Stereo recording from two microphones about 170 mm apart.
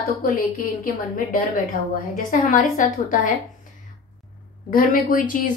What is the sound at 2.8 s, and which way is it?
Speech, 45° left (ahead or behind).